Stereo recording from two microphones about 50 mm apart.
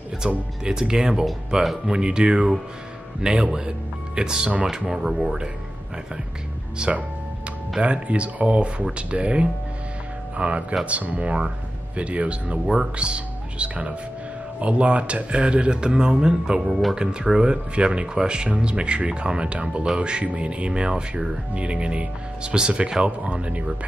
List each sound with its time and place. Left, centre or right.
0.2 s speech: centre
1.9 s speech: centre
6.8 s speech: centre